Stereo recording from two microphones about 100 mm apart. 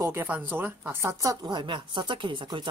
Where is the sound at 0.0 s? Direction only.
25° right (ahead or behind).